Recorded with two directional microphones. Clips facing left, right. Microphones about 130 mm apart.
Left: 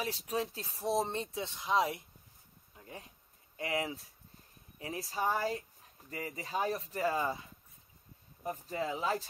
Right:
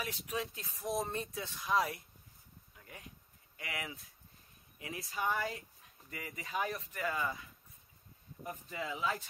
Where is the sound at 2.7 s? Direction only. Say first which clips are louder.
Left 5 dB; 30° left (ahead or behind).